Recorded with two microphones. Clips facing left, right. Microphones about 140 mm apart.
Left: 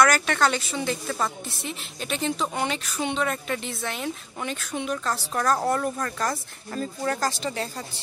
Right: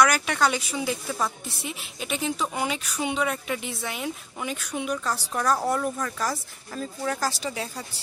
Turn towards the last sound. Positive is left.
turn(degrees=-5)  # may be behind; listen again after turning